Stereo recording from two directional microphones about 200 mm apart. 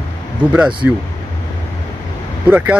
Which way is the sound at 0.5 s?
5° right (ahead or behind).